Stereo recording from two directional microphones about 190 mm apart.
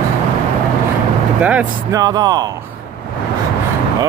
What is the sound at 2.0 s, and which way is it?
Speech, 20° right (ahead or behind).